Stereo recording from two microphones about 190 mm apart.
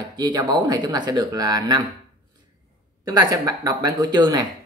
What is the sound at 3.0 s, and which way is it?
A woman's voice, 20° right (ahead or behind).